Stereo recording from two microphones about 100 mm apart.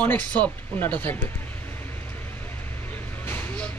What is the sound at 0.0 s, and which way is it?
Speech, 15° left (ahead or behind).